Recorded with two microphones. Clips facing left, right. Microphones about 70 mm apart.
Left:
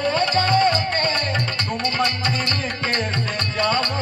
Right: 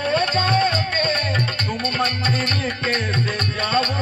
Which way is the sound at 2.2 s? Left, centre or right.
Right.